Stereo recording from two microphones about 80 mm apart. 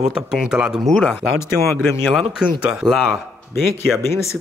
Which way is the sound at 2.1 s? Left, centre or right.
Centre.